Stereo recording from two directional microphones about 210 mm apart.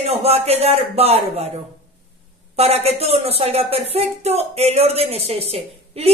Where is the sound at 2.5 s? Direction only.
30° right (ahead or behind).